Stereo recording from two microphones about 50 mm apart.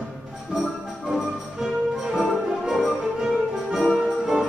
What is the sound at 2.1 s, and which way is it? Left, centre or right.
Music, centre.